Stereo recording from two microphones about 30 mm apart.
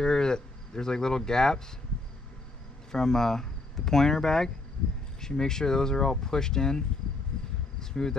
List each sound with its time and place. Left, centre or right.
0.0 s speech: left
2.9 s speech: centre
7.3 s insect: left
7.8 s speech: left